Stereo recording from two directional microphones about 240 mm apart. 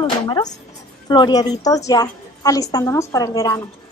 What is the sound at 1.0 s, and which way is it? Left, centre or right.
Speech, centre.